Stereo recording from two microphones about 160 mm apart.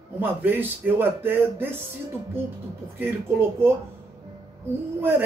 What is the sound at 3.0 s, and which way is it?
Speech, 15° right (ahead or behind).